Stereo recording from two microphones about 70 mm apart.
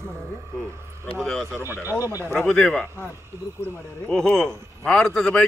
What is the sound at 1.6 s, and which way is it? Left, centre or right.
Speech, right.